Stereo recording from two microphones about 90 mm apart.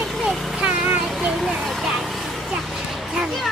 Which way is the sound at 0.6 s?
20° right (ahead or behind).